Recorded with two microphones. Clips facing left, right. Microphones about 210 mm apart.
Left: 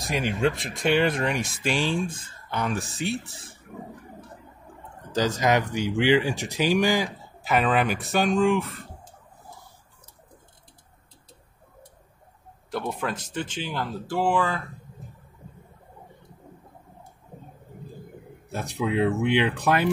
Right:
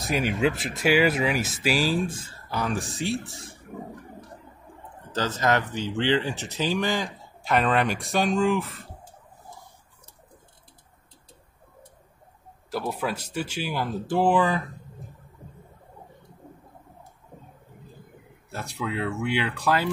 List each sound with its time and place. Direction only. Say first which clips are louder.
0.0 s speech: right 1 dB; centre (ahead or behind)
5.1 s speech: left 2 dB; 15° left (ahead or behind)
12.7 s speech: right 1 dB; 5° right (ahead or behind)
18.5 s speech: left 5 dB; 20° left (ahead or behind)